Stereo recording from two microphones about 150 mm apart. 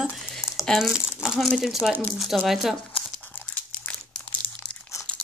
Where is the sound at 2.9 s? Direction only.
10° left (ahead or behind).